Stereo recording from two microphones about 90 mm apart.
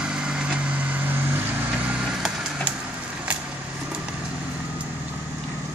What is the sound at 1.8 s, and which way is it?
Vehicle, 10° right (ahead or behind).